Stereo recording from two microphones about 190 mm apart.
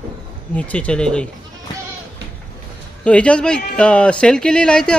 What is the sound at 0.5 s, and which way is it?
Speech, 5° left (ahead or behind).